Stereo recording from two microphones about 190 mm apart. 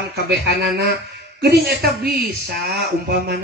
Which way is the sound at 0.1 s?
60° right (ahead or behind).